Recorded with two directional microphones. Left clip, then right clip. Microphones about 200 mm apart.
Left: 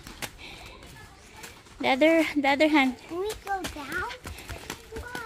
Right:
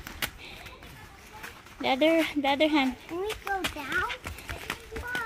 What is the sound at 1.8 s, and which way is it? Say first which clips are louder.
Speech: left 2 dB; 20° left (ahead or behind).